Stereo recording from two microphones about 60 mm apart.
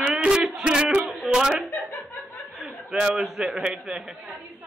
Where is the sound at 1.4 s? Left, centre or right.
Centre.